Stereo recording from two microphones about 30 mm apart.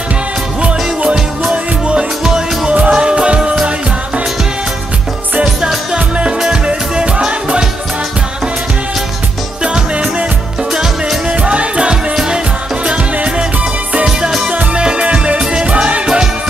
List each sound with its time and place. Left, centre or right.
1.5 s music: right
2.2 s music: right
5.9 s music: right
9.6 s music: right
11.2 s music: right
14.8 s music: right